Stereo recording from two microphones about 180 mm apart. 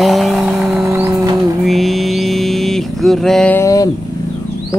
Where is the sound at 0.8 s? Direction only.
20° right (ahead or behind).